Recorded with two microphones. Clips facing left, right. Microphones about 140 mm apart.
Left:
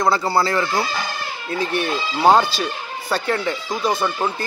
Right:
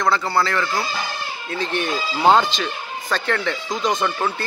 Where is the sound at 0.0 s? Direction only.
30° left (ahead or behind).